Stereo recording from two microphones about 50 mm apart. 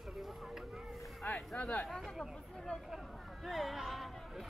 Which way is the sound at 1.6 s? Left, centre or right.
Left.